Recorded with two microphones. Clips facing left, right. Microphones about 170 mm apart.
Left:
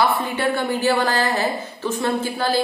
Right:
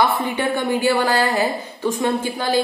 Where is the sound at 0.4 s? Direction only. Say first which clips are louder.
Right 2 dB; 15° right (ahead or behind).